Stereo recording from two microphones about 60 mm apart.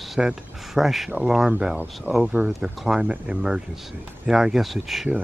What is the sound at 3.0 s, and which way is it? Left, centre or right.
Speech, centre.